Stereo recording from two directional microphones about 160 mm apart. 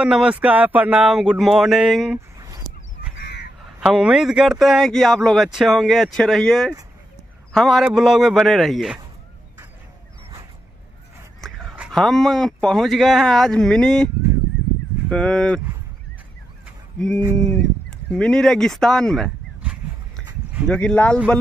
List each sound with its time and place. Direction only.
0.0 s a man's voice: 5° right (ahead or behind)
2.3 s a sound: 20° right (ahead or behind)
3.6 s a man's voice: 5° right (ahead or behind)
11.4 s a sound: centre (ahead or behind)
11.9 s a man's voice: centre (ahead or behind)
17.4 s a man's voice: 5° left (ahead or behind)
20.6 s speech: 10° left (ahead or behind)